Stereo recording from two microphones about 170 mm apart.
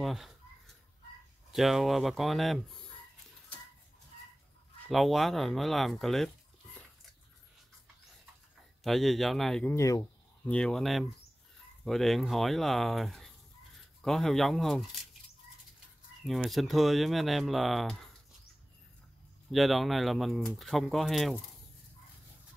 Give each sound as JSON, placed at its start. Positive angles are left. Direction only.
{"t": 0.0, "sound": "a sound", "side_deg": 0}
{"t": 1.5, "sound": "speech", "side_deg": 0}
{"t": 4.8, "sound": "speech", "side_deg": 0}
{"t": 8.8, "sound": "speech", "side_deg": 0}
{"t": 9.8, "sound": "speech", "side_deg": 20}
{"t": 10.4, "sound": "speech", "side_deg": 5}
{"t": 16.3, "sound": "speech", "side_deg": 0}
{"t": 19.5, "sound": "speech", "side_deg": 0}